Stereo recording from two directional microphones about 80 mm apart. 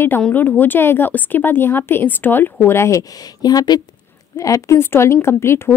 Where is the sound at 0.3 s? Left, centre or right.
Left.